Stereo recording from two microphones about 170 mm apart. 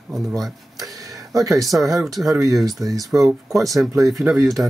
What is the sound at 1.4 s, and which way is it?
Speech, 20° right (ahead or behind).